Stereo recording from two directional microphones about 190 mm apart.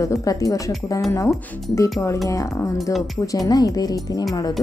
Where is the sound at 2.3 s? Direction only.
15° left (ahead or behind).